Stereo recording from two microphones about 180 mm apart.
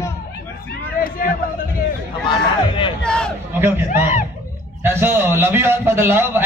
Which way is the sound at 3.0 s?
5° left (ahead or behind).